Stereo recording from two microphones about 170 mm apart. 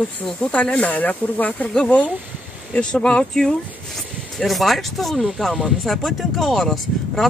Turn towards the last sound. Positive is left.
turn(degrees=0)  # may be behind; listen again after turning